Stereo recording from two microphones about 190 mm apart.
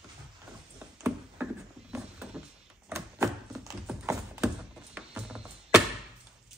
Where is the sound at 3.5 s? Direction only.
5° right (ahead or behind).